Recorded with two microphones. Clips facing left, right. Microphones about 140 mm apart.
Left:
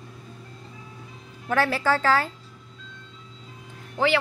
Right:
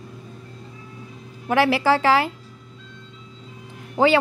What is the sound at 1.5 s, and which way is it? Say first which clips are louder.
Speech: right 5 dB; 10° right (ahead or behind).